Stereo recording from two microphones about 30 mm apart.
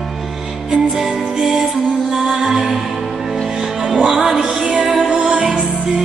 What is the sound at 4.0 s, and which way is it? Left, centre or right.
Music, centre.